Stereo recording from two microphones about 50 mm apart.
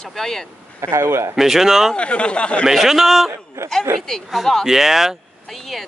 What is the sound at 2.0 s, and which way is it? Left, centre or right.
Speech, left.